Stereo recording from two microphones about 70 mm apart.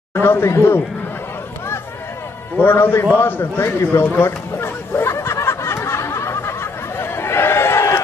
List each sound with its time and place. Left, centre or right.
0.1 s speech: left
2.5 s speech: left
3.2 s a sound: left